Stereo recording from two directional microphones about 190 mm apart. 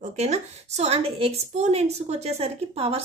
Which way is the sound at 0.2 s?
35° right (ahead or behind).